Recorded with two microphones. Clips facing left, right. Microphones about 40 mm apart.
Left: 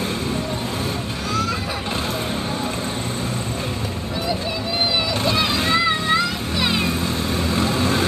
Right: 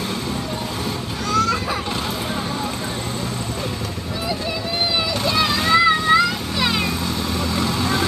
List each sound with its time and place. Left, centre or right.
1.3 s children playing: centre
5.2 s music: centre
7.4 s vehicle: centre